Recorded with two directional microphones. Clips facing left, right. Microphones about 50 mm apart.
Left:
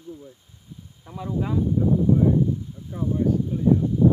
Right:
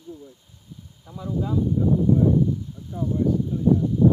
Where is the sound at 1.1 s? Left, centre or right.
Left.